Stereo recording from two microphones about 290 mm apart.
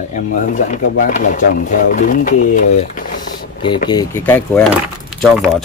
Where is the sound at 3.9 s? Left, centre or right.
Centre.